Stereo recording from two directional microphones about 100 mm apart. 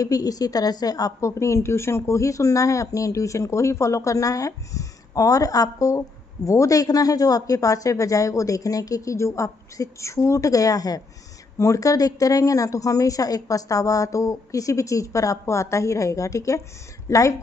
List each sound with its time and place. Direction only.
0.0 s a woman's voice: 35° left (ahead or behind)